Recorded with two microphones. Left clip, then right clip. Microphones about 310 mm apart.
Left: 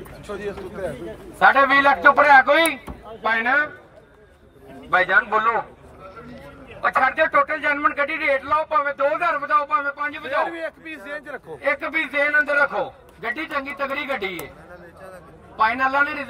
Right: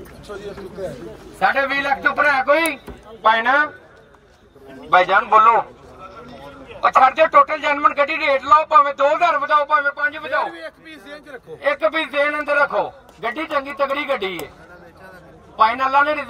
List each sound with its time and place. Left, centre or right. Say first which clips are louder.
2.0 s speech: left 1 dB; left
2.3 s a man's voice: left 3 dB; centre
4.9 s a man's voice: right 5 dB; right
6.8 s a man's voice: right 5 dB; right; by 10.4 s centre
11.6 s a man's voice: right 4 dB; centre
15.5 s a man's voice: right 4 dB; centre